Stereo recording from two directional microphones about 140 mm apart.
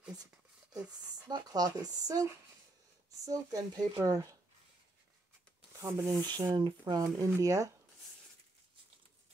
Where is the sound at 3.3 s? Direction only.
25° right (ahead or behind).